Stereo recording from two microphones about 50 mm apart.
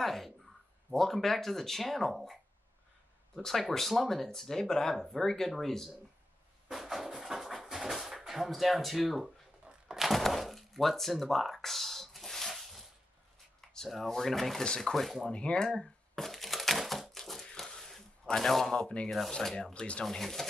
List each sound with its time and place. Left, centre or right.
0.0 s a sound: centre
0.9 s speech: centre
3.3 s speech: centre
6.7 s a sound: centre
8.2 s speech: centre
9.7 s a sound: centre
13.6 s speech: centre
15.3 s speech: centre
15.8 s crushing: centre
17.6 s a sound: centre
18.2 s speech: centre
20.1 s speech: centre